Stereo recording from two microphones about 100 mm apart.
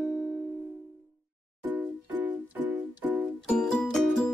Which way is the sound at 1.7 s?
15° right (ahead or behind).